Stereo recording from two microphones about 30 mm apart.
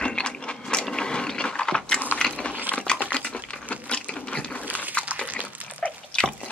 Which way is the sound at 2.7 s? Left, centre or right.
Right.